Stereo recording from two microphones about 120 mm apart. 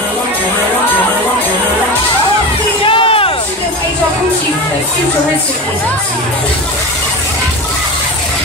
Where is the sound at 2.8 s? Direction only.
45° left (ahead or behind).